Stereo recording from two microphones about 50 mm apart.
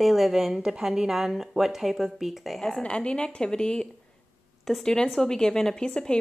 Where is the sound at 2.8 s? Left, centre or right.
Left.